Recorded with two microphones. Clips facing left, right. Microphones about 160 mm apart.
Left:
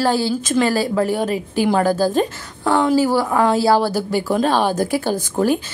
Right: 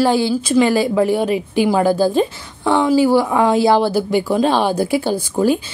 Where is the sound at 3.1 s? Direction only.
15° right (ahead or behind).